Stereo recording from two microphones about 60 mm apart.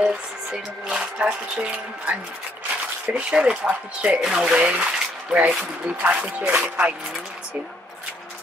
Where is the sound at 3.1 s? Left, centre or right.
Centre.